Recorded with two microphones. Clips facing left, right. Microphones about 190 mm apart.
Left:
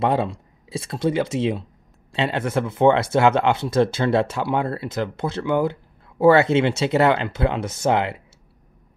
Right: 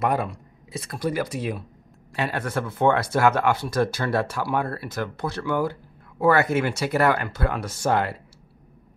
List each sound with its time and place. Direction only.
0.0 s speech: 25° left (ahead or behind)